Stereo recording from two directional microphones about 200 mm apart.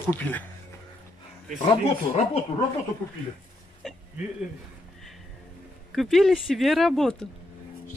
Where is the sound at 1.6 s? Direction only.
30° left (ahead or behind).